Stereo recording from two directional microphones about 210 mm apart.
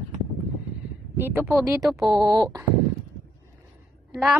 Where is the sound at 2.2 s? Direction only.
15° right (ahead or behind).